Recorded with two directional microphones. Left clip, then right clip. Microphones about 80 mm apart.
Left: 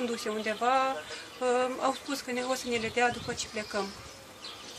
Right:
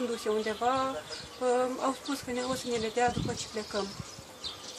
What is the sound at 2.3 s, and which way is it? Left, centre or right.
Speech, right.